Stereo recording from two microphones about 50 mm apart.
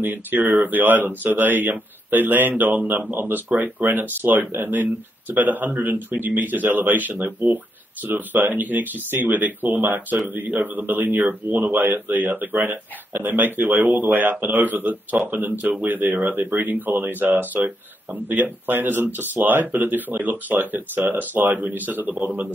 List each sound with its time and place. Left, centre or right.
0.0 s speech: right